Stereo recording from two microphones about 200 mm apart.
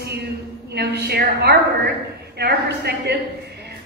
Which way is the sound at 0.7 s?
55° right (ahead or behind).